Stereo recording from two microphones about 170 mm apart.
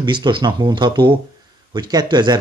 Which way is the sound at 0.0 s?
25° right (ahead or behind).